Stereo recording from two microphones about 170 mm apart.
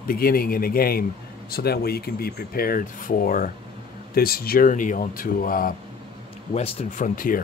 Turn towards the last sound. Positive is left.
turn(degrees=50)  # may be behind; listen again after turning